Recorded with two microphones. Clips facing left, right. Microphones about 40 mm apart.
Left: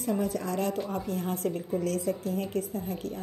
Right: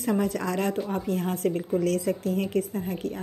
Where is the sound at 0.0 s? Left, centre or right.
Right.